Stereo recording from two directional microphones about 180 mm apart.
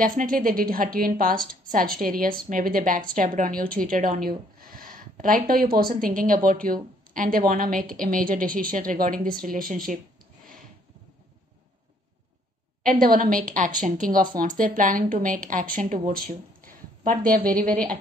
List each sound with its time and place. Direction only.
0.0 s a woman's voice: 50° right (ahead or behind)
12.8 s a woman's voice: 50° right (ahead or behind)